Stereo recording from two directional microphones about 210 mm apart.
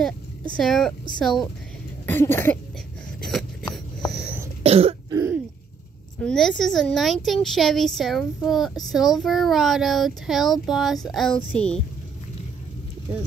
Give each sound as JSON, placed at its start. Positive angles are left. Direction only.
{"t": 0.6, "sound": "a child's voice", "side_deg": 0}
{"t": 2.0, "sound": "cough", "side_deg": 10}
{"t": 3.2, "sound": "a sound", "side_deg": 0}
{"t": 4.6, "sound": "cough", "side_deg": -30}
{"t": 5.1, "sound": "throat clearing", "side_deg": -10}
{"t": 6.1, "sound": "a child's voice", "side_deg": 5}